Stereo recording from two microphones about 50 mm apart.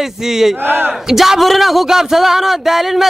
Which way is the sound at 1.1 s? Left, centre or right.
Centre.